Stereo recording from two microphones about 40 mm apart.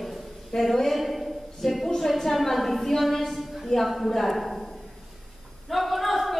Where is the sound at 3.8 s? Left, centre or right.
Centre.